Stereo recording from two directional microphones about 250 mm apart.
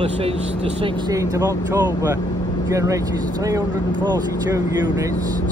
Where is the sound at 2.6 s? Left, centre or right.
Centre.